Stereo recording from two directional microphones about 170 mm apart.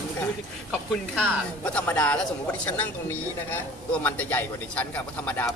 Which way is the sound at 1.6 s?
5° left (ahead or behind).